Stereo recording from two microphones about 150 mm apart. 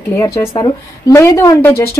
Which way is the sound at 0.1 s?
20° left (ahead or behind).